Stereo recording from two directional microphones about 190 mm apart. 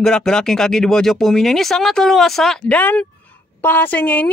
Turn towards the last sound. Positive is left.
turn(degrees=10)  # may be behind; listen again after turning